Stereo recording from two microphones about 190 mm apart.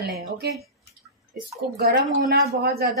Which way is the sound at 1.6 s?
60° right (ahead or behind).